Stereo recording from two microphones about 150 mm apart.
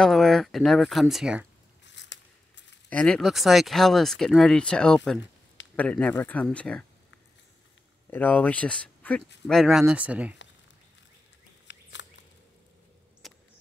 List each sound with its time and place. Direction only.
0.0 s speech: centre (ahead or behind)
2.9 s speech: 5° left (ahead or behind)
8.1 s speech: 10° left (ahead or behind); by 10.3 s 10° right (ahead or behind)
13.2 s a sound: centre (ahead or behind)